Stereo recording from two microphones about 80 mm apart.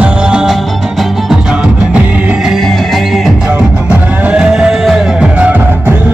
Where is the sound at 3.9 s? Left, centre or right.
Centre.